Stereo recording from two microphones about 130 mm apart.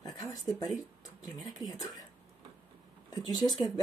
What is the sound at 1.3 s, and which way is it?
Speech, centre (ahead or behind).